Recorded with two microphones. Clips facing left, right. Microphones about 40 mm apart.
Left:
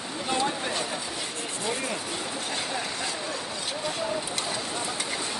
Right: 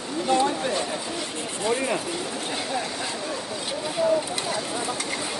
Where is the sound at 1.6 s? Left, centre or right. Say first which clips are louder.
Right 7 dB; right.